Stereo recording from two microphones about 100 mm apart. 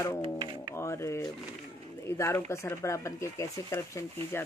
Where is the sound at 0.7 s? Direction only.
30° left (ahead or behind).